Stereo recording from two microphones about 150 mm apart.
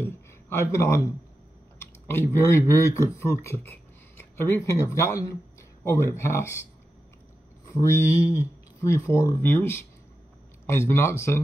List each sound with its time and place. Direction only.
0.0 s a sound: 20° left (ahead or behind)
2.0 s speech: 15° left (ahead or behind)
7.7 s speech: 20° left (ahead or behind)